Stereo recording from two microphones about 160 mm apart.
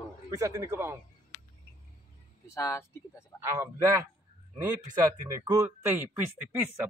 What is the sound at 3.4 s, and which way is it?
A man's voice, 15° right (ahead or behind).